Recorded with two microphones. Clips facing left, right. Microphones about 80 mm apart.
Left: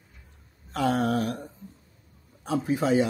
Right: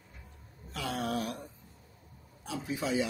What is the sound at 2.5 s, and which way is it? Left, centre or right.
Speech, left.